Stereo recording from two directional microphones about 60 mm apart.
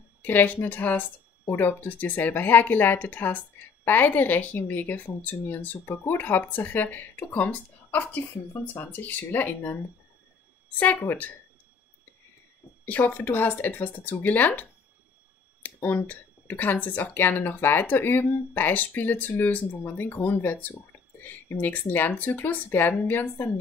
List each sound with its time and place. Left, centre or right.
0.2 s speech: left
10.8 s speech: left
12.8 s speech: left
15.6 s speech: left